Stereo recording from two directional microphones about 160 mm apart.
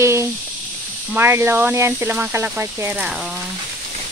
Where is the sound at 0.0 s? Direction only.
15° right (ahead or behind).